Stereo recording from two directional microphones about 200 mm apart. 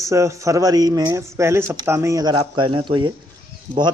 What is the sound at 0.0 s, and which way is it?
Speech, 15° right (ahead or behind).